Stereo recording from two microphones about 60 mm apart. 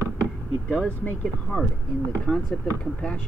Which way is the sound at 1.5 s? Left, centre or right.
Centre.